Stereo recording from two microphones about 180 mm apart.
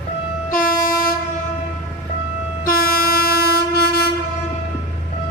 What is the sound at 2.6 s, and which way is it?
Train, 55° left (ahead or behind).